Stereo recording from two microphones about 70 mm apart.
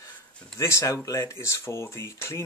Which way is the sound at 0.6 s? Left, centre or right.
Left.